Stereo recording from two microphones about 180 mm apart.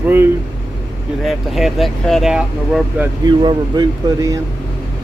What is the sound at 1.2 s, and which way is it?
Speech, centre (ahead or behind).